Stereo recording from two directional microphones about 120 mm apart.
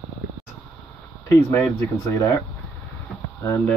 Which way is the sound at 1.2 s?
25° left (ahead or behind).